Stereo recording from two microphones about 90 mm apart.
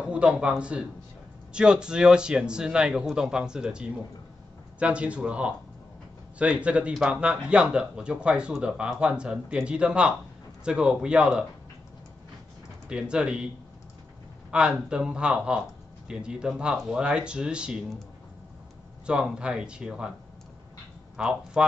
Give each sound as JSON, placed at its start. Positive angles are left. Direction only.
{"t": 0.0, "sound": "a man's voice", "side_deg": -10}
{"t": 12.8, "sound": "a man's voice", "side_deg": -10}
{"t": 14.5, "sound": "a man's voice", "side_deg": -10}
{"t": 19.0, "sound": "a man's voice", "side_deg": -10}
{"t": 21.2, "sound": "a man's voice", "side_deg": -10}